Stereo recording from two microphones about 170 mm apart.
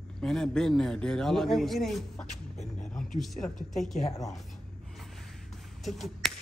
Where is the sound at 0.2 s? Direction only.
5° left (ahead or behind).